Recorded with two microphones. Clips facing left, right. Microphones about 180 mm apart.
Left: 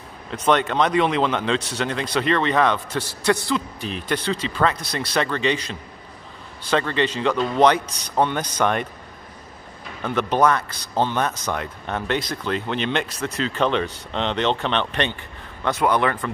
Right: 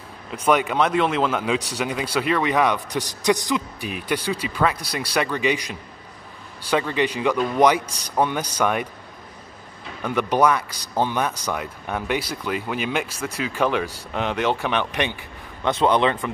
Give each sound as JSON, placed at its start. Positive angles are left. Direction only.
{"t": 0.3, "sound": "speech", "side_deg": -10}
{"t": 10.0, "sound": "speech", "side_deg": -10}
{"t": 15.7, "sound": "a man's voice", "side_deg": -20}